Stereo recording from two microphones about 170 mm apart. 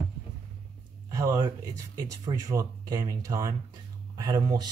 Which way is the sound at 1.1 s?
20° right (ahead or behind).